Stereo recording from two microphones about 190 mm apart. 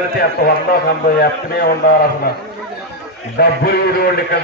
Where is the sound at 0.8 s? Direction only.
55° left (ahead or behind).